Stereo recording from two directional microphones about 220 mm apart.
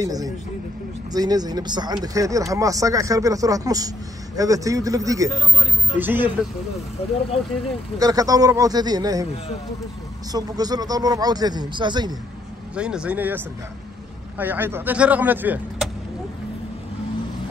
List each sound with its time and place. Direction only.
0.0 s speech: 15° right (ahead or behind)
8.0 s speech: 15° right (ahead or behind)
10.3 s speech: 15° right (ahead or behind)
12.7 s speech: 5° right (ahead or behind)
14.4 s speech: 10° right (ahead or behind)